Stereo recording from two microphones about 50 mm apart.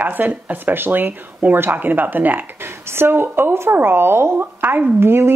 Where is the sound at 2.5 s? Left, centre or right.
Right.